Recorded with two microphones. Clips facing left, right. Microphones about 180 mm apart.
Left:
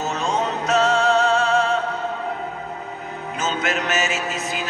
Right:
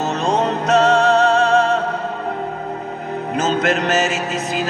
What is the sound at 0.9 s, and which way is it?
Music, 35° right (ahead or behind).